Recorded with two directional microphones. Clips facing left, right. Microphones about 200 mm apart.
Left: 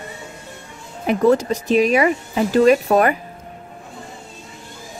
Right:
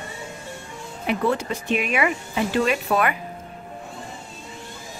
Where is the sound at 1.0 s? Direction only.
40° left (ahead or behind).